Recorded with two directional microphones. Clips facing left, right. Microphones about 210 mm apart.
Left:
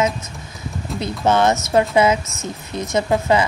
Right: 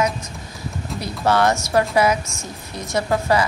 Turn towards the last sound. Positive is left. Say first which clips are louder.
# left 2 dB
turn(degrees=20)  # may be behind; listen again after turning